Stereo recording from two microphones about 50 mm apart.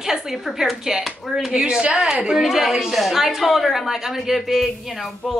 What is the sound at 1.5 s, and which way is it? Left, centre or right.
A woman's voice, centre.